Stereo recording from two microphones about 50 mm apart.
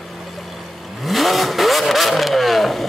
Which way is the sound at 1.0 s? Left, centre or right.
Centre.